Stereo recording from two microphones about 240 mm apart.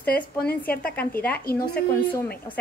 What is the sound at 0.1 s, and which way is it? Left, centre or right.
Speech, left.